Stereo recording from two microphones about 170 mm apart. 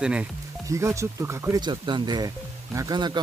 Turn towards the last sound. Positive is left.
turn(degrees=-25)  # may be behind; listen again after turning